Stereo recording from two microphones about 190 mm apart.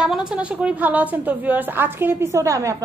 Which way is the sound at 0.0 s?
Centre (ahead or behind).